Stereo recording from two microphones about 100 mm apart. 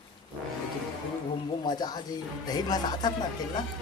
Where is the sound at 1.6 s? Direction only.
45° left (ahead or behind).